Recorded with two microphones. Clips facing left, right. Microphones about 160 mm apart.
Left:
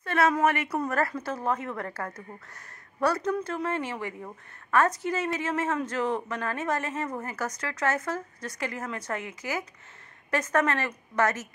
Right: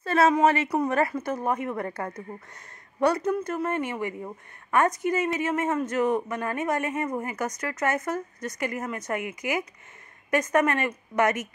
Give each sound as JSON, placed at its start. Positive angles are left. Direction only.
{"t": 0.0, "sound": "a sound", "side_deg": -30}
{"t": 0.5, "sound": "speech", "side_deg": -30}
{"t": 0.7, "sound": "speech", "side_deg": -20}